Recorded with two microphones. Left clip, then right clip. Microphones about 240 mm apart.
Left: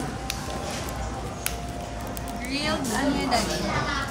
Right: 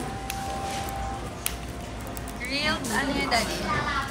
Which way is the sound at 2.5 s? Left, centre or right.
Centre.